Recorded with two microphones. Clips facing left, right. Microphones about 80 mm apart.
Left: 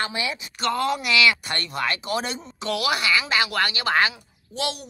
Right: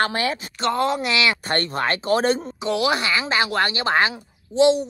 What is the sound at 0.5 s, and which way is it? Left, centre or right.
Speech, right.